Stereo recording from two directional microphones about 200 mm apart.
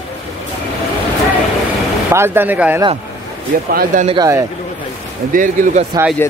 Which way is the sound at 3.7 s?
45° right (ahead or behind).